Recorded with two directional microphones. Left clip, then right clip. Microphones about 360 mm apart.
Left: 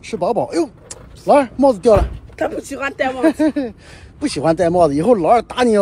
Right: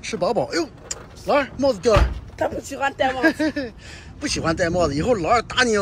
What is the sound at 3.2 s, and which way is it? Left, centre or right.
Speech, centre.